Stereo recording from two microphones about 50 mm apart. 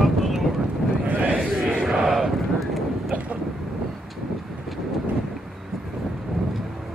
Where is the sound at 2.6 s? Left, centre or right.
Centre.